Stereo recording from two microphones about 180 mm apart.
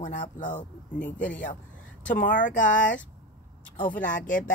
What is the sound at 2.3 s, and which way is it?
Speech, 45° left (ahead or behind).